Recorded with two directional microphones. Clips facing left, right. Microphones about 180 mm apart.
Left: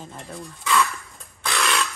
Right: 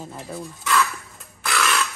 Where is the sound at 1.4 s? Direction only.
Centre (ahead or behind).